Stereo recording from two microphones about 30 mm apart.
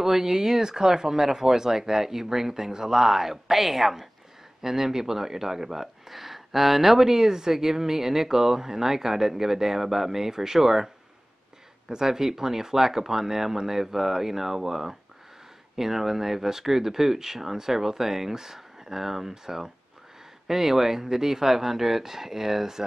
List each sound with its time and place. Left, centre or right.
0.0 s speech: centre
11.9 s speech: centre